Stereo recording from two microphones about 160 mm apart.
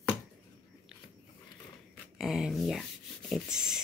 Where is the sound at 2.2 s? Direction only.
Centre (ahead or behind).